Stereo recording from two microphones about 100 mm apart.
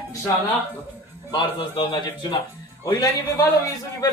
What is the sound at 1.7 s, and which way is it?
Speech, 50° left (ahead or behind).